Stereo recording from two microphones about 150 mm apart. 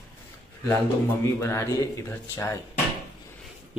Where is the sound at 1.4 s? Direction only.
20° left (ahead or behind).